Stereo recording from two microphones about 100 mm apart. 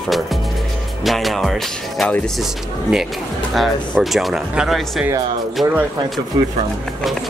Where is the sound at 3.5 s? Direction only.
Centre (ahead or behind).